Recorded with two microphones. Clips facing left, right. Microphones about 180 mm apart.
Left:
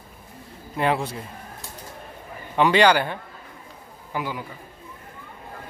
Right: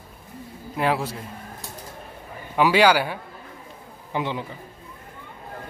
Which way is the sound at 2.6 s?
5° right (ahead or behind).